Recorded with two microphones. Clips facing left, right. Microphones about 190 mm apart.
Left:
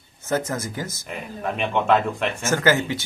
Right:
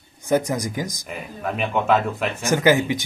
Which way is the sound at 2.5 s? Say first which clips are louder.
Right 3 dB; 15° right (ahead or behind).